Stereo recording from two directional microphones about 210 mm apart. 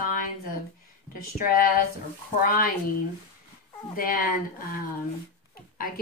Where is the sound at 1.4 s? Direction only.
40° left (ahead or behind).